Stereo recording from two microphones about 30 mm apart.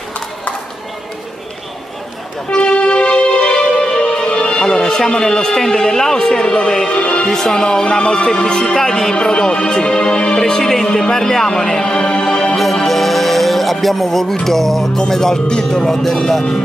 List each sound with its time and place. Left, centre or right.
2.5 s music: left
4.9 s music: centre; by 7.2 s left
7.2 s music: centre
10.4 s speech: centre
12.2 s music: left
12.8 s music: centre
14.4 s speech: centre
15.8 s speech: centre